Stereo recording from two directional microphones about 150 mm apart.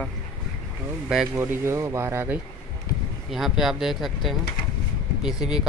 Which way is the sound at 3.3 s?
Centre (ahead or behind).